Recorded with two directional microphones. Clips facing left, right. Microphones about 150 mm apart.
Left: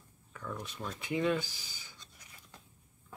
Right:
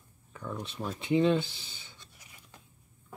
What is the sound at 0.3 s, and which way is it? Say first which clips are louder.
Speech: right 3 dB; 25° right (ahead or behind).